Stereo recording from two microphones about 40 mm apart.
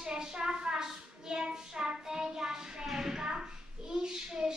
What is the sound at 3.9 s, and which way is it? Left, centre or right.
Child singing, centre.